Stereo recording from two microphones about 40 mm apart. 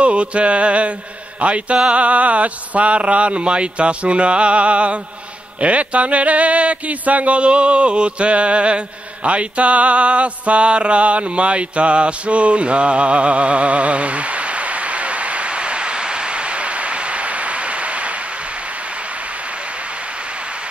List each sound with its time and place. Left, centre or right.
0.0 s mantra: right
1.4 s speech: right
5.6 s a sound: right